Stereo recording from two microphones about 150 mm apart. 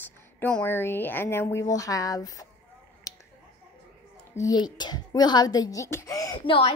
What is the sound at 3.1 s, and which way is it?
Finger snapping, 25° left (ahead or behind).